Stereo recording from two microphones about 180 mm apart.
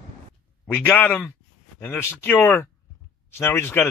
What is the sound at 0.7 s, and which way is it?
Speech, 10° left (ahead or behind).